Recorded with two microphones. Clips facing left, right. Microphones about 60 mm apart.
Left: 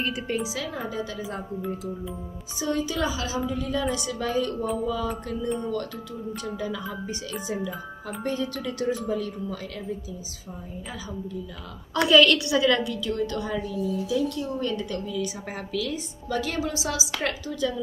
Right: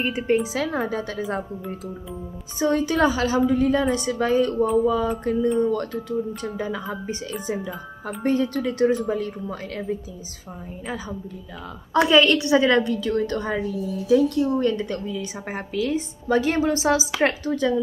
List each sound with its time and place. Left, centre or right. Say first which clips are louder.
0.0 s a woman's voice: right 6 dB; right
2.6 s a woman's voice: right 7 dB; right
8.2 s a woman's voice: right 7 dB; right
12.1 s a woman's voice: even; right